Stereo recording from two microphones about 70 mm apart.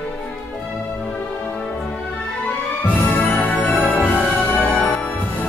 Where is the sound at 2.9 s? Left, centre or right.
Left.